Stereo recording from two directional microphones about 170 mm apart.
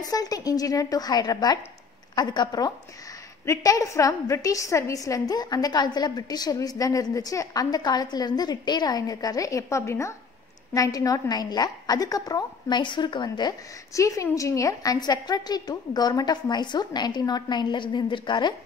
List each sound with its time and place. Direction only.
0.0 s a woman's voice: 20° left (ahead or behind)